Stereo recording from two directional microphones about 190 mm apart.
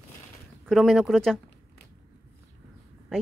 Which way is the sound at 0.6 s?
Centre (ahead or behind).